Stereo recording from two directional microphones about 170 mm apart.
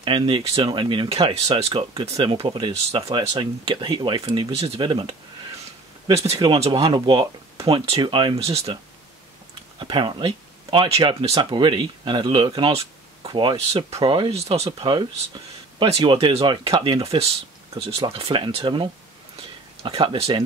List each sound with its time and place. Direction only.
0.0 s speech: 30° right (ahead or behind)
9.8 s speech: 30° right (ahead or behind)